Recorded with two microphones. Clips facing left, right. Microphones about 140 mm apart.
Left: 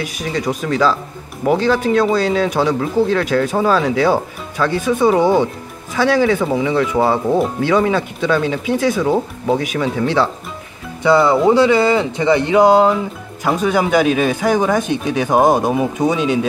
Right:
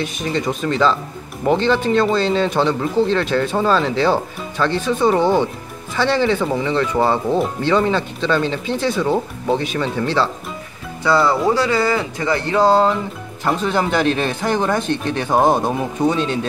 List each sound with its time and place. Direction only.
0.0 s speech: 10° left (ahead or behind)